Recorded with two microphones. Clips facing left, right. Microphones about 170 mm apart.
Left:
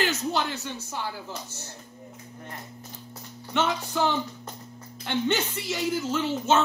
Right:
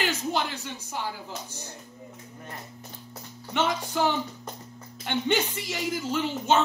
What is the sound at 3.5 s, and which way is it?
Speech, 10° right (ahead or behind).